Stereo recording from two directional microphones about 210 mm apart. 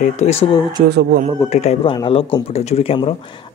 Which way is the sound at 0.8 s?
50° right (ahead or behind).